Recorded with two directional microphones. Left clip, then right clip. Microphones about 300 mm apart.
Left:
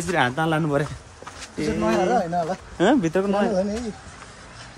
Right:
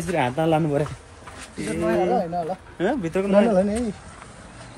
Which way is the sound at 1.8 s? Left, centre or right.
Left.